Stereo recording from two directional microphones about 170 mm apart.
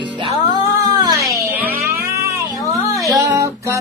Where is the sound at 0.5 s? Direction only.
20° right (ahead or behind).